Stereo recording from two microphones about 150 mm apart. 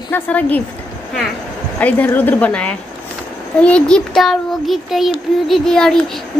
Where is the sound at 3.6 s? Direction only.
5° left (ahead or behind).